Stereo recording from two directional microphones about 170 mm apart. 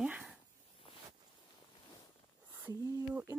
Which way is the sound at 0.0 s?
5° right (ahead or behind).